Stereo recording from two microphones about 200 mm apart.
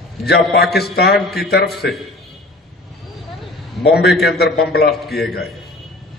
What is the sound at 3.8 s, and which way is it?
A man's voice, 55° left (ahead or behind).